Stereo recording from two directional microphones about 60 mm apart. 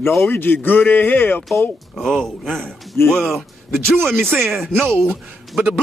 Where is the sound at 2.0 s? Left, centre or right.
Centre.